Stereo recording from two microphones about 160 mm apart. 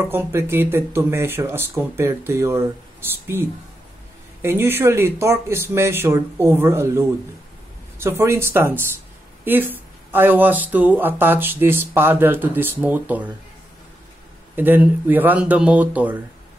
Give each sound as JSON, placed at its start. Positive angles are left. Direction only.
{"t": 0.1, "sound": "speech", "side_deg": -15}
{"t": 14.5, "sound": "speech", "side_deg": -10}